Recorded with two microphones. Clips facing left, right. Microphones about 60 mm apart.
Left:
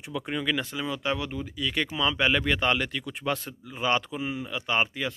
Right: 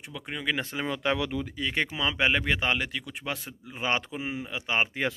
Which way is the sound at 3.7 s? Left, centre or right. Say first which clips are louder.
Left 2 dB; right.